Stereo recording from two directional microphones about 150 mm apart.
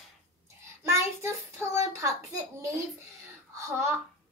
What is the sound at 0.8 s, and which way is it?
Child singing, 20° right (ahead or behind).